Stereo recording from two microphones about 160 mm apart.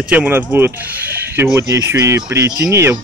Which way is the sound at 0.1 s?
10° right (ahead or behind).